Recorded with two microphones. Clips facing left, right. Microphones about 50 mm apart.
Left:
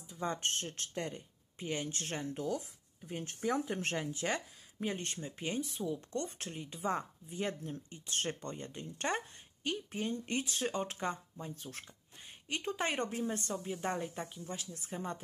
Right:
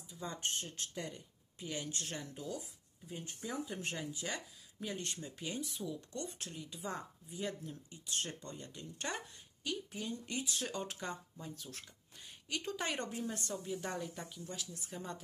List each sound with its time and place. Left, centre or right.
0.1 s speech: left